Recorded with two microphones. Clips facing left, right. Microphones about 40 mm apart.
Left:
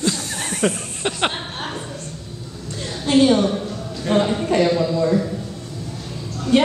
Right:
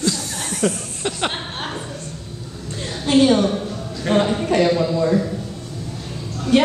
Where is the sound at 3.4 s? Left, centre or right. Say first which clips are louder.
Even; centre.